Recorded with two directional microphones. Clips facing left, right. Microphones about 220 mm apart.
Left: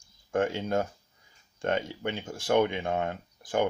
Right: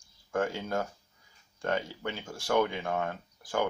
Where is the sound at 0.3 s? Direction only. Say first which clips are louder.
Left 3 dB; 20° left (ahead or behind).